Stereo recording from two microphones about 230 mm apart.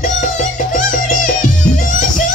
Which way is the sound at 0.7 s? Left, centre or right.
Left.